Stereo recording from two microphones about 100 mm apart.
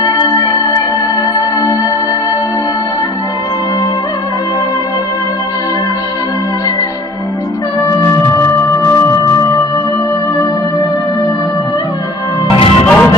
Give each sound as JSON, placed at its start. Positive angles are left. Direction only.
{"t": 12.4, "sound": "music", "side_deg": 65}
{"t": 12.8, "sound": "music", "side_deg": 15}